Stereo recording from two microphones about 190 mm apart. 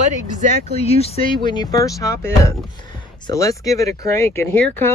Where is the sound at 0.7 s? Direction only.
35° left (ahead or behind).